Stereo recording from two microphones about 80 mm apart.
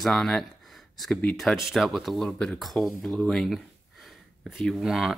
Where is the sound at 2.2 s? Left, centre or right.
Centre.